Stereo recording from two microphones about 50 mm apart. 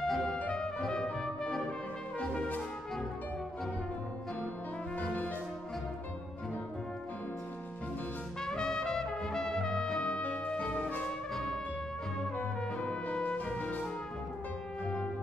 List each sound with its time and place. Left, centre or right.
0.0 s music: centre
0.5 s brass instrument: centre
2.1 s brass instrument: left
4.9 s music: left
8.4 s trumpet: centre
10.2 s music: left
11.1 s music: centre
12.7 s brass instrument: left